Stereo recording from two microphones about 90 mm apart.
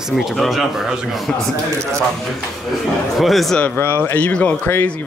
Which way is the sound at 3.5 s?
20° left (ahead or behind).